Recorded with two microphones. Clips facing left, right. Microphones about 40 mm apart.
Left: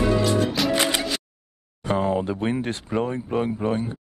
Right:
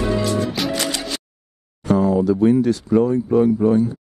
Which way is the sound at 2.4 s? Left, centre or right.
Left.